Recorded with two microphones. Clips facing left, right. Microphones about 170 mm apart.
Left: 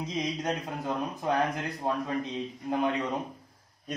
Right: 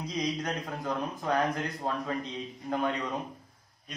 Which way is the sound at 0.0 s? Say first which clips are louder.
Left 1 dB; 25° left (ahead or behind).